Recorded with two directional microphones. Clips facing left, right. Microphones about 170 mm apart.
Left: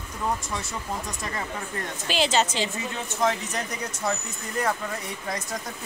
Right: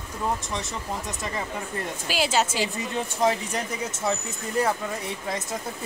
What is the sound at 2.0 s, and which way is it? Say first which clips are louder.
A woman's voice: left 1 dB; 5° right (ahead or behind).